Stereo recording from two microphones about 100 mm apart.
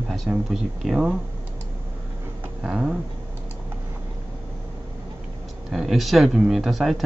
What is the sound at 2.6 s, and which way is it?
Speech, 5° right (ahead or behind).